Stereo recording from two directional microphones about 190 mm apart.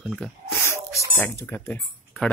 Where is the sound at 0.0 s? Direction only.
5° left (ahead or behind).